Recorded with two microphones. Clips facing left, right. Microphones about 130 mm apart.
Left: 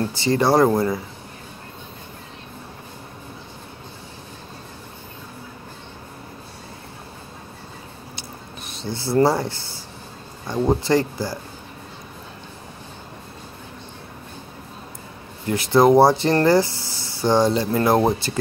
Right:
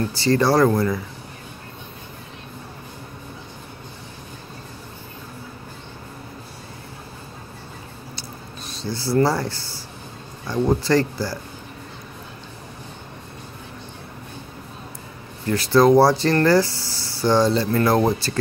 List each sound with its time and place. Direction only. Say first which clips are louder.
0.0 s speech: right 1 dB; 20° left (ahead or behind)
8.6 s speech: right 1 dB; 20° left (ahead or behind)
10.7 s speech: even; 20° left (ahead or behind)
15.4 s speech: even; 20° left (ahead or behind)